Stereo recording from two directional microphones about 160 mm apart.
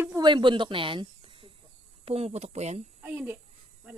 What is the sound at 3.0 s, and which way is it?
Speech, 10° right (ahead or behind).